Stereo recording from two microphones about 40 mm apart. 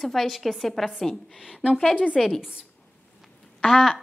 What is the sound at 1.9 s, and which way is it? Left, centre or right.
Speech, left.